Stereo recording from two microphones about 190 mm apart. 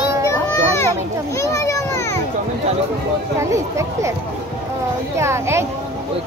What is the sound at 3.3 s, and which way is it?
Speech, 15° right (ahead or behind).